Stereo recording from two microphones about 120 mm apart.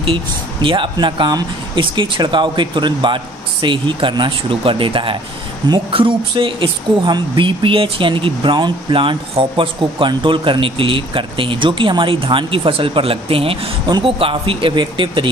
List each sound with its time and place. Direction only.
0.0 s speech: 45° right (ahead or behind)